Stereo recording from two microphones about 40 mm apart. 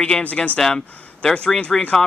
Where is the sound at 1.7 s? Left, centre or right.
Centre.